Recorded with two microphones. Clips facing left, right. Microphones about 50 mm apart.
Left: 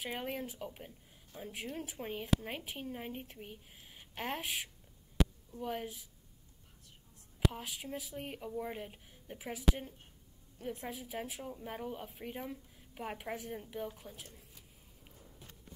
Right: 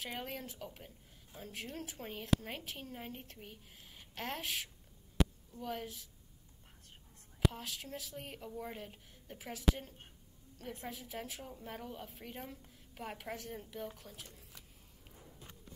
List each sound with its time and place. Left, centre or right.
0.0 s a woman's voice: centre
7.5 s a woman's voice: centre
10.9 s a woman's voice: centre